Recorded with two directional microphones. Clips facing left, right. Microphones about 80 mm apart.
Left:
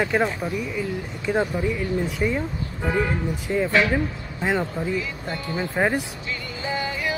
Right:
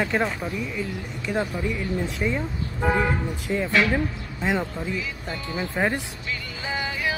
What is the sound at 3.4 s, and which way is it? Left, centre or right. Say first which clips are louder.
Speech: left 2 dB; centre.